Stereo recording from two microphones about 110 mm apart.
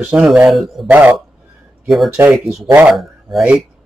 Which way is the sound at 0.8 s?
15° right (ahead or behind).